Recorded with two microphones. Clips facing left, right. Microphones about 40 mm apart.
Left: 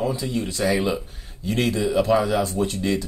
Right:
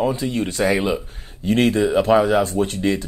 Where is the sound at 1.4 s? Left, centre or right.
Right.